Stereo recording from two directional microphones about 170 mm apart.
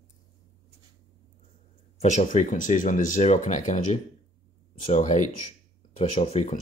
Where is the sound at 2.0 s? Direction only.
45° left (ahead or behind).